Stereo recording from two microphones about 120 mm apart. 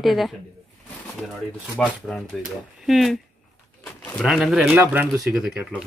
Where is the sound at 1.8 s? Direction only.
Centre (ahead or behind).